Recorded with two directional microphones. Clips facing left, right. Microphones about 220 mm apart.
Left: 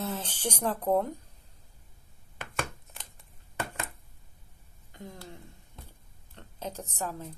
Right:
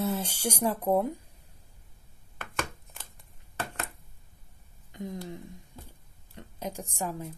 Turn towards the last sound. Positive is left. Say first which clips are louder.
# right 2 dB
turn(degrees=-10)  # may be behind; listen again after turning